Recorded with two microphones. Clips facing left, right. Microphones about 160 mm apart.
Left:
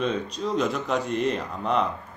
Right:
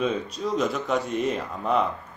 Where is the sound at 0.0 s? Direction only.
5° right (ahead or behind).